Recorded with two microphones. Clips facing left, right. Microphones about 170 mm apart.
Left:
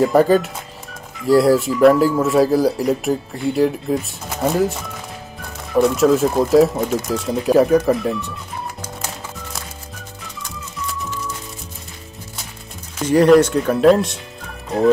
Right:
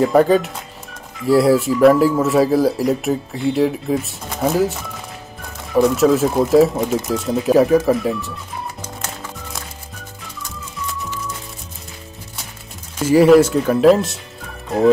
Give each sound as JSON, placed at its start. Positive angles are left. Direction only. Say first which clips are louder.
{"t": 0.0, "sound": "speech", "louder": "even", "side_deg": 0}
{"t": 9.0, "sound": "music", "louder": "right 1 dB", "side_deg": 0}
{"t": 13.0, "sound": "speech", "louder": "right 1 dB", "side_deg": -5}